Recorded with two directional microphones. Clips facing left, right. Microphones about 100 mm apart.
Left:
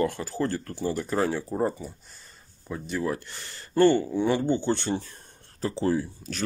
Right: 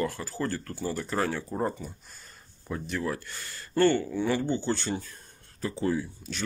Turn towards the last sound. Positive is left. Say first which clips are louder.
# left 3 dB
turn(degrees=35)  # may be behind; listen again after turning